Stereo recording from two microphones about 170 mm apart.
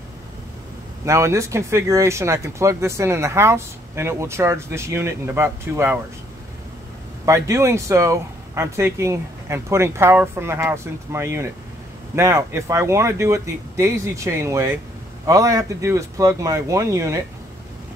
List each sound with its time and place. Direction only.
1.0 s speech: 15° right (ahead or behind)
7.2 s speech: 15° right (ahead or behind)